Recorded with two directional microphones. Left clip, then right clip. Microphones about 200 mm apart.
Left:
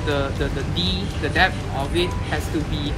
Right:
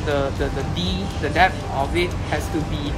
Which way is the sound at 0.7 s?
10° right (ahead or behind).